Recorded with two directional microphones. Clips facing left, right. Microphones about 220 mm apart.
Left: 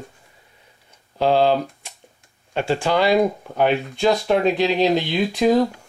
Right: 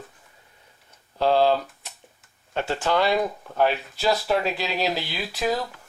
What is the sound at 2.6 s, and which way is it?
Speech, 10° left (ahead or behind).